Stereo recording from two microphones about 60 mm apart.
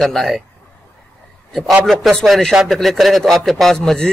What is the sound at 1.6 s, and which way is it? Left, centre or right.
Speech, centre.